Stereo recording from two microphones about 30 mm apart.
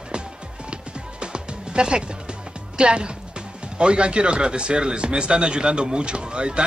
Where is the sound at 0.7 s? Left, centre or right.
Right.